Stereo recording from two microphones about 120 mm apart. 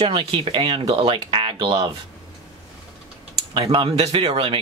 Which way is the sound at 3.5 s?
45° right (ahead or behind).